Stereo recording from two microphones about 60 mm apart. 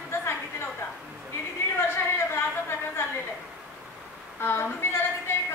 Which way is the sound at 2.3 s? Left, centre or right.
Left.